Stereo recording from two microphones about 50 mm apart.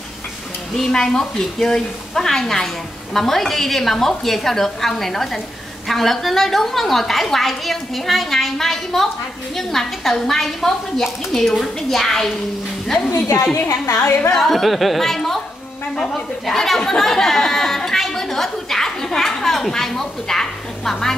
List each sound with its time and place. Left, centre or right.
0.7 s a woman's voice: centre
13.1 s a woman's voice: left
14.3 s a woman's voice: centre